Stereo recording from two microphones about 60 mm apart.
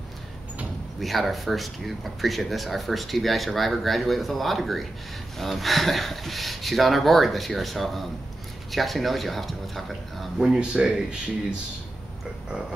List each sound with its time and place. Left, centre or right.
1.0 s speech: centre
10.5 s speech: centre